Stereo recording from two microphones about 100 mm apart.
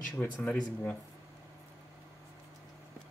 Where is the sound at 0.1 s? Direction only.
20° left (ahead or behind).